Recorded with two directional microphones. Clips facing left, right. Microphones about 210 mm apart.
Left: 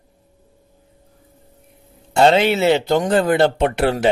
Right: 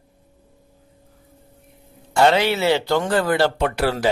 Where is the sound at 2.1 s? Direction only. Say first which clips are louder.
Left 3 dB; 25° left (ahead or behind).